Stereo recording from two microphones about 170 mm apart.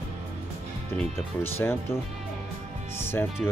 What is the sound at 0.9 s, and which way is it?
Speech, 10° left (ahead or behind).